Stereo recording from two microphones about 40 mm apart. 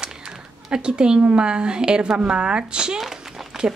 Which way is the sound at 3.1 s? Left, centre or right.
Centre.